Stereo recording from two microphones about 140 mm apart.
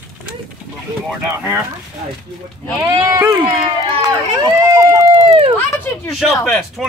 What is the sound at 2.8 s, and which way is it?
Speech, 25° right (ahead or behind).